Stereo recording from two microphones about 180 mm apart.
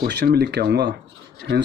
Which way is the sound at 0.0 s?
60° right (ahead or behind).